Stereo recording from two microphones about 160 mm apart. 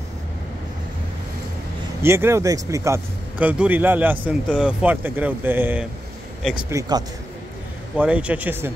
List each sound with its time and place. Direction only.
2.0 s a man's voice: 15° right (ahead or behind)
7.9 s a man's voice: 10° right (ahead or behind)